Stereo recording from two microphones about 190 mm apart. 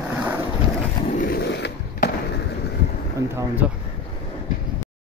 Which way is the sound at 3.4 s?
10° right (ahead or behind).